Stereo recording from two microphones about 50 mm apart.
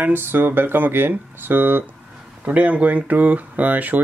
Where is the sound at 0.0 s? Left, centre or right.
Right.